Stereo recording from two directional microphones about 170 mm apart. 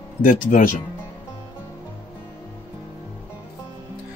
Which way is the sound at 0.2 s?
55° left (ahead or behind).